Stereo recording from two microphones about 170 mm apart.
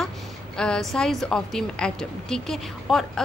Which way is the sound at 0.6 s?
5° left (ahead or behind).